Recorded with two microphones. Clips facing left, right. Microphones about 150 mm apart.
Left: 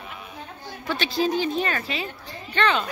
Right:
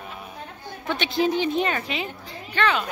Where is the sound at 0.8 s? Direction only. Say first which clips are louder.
Right 1 dB; 20° right (ahead or behind).